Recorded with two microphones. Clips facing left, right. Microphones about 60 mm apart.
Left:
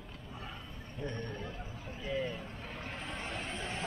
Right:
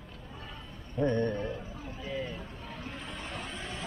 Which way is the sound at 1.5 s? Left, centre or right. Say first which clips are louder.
Right 4 dB; right.